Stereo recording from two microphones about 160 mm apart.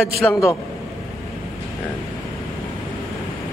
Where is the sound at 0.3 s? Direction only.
20° left (ahead or behind).